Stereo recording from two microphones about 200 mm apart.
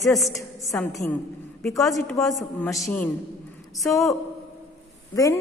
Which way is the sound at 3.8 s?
15° left (ahead or behind).